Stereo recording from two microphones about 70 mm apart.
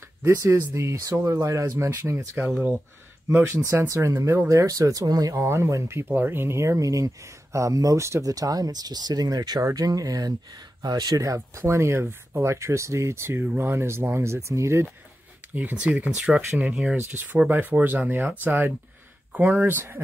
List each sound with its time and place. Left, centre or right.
0.2 s speech: right
0.5 s speech: right
5.3 s speech: right
8.3 s speech: right
9.7 s speech: right
13.4 s speech: right
13.7 s speech: right
15.5 s speech: right